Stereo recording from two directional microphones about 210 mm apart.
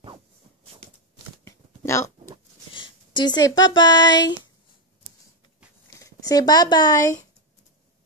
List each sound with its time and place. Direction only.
1.4 s a sound: 15° left (ahead or behind)
2.7 s speech: 20° left (ahead or behind)
5.9 s speech: 15° left (ahead or behind)